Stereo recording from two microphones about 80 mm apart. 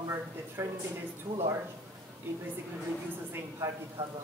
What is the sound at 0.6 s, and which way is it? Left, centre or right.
Speech, right.